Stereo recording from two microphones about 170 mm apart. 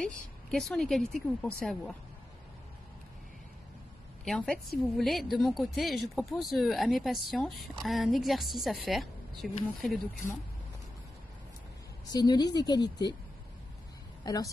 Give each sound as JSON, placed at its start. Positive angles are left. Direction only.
{"t": 0.0, "sound": "speech", "side_deg": 5}
{"t": 4.2, "sound": "speech", "side_deg": 5}
{"t": 12.1, "sound": "speech", "side_deg": 25}
{"t": 14.2, "sound": "a woman's voice", "side_deg": 20}